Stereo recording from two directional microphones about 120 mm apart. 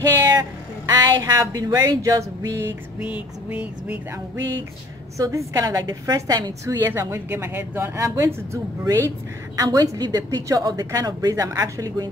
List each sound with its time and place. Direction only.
0.2 s a woman's voice: 35° right (ahead or behind)
3.0 s a sound: 10° right (ahead or behind)
5.1 s a woman's voice: 25° right (ahead or behind)
6.8 s a woman's voice: 20° right (ahead or behind)
9.6 s a woman's voice: 35° right (ahead or behind)